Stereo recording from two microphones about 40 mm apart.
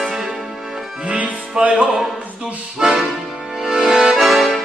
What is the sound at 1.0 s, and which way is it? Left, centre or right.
Music, right.